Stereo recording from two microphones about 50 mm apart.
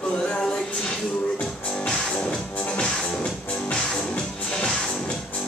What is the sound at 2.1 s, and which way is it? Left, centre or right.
Music, centre.